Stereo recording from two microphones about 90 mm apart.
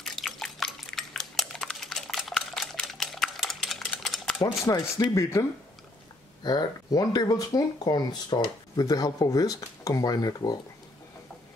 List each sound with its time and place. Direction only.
0.0 s typing: 5° left (ahead or behind)
4.6 s speech: 40° left (ahead or behind)
6.4 s speech: 45° left (ahead or behind)